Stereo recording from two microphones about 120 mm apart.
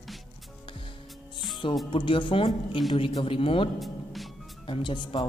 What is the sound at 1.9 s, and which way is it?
Speech, 45° left (ahead or behind).